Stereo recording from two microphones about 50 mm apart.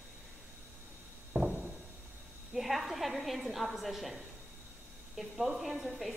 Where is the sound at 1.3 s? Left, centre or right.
Centre.